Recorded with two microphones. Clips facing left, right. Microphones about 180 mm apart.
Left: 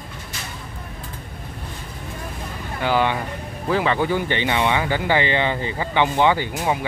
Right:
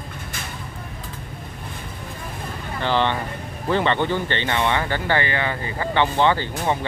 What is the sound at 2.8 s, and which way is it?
Speech, 10° left (ahead or behind).